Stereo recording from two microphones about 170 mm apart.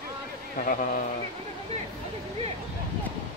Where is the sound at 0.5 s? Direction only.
50° left (ahead or behind).